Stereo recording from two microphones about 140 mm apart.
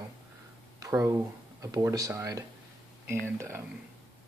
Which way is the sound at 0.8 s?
20° right (ahead or behind).